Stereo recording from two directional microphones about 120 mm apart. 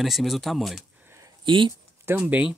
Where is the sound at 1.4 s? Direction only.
45° right (ahead or behind).